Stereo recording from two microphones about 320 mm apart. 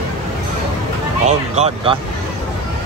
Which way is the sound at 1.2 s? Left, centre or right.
Right.